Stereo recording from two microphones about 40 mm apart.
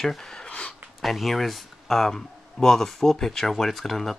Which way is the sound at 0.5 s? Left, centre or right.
Left.